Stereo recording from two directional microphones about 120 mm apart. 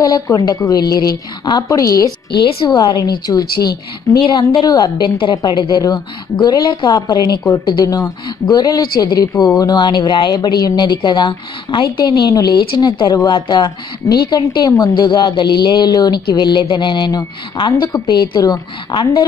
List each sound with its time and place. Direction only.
0.0 s speech: 30° left (ahead or behind)